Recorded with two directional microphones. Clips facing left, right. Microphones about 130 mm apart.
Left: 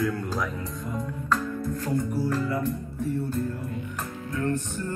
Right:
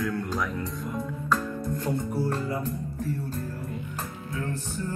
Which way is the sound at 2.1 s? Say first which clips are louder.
Left 2 dB; 25° right (ahead or behind).